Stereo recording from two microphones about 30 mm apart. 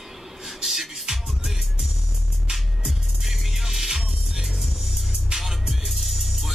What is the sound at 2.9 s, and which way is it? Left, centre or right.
Music, centre.